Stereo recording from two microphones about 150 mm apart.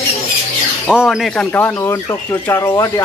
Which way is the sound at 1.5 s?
15° left (ahead or behind).